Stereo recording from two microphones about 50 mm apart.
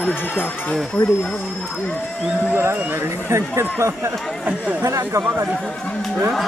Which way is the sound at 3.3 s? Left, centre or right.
Right.